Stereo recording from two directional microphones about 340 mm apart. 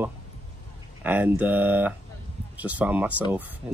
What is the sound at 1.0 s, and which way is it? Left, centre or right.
Speech, centre.